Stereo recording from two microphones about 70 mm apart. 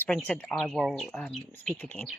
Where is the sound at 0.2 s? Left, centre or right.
Centre.